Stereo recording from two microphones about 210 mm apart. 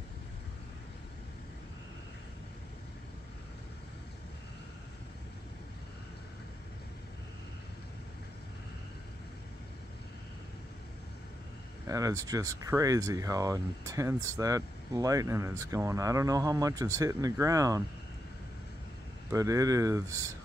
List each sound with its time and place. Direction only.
11.9 s speech: 15° right (ahead or behind)
19.3 s speech: 15° right (ahead or behind)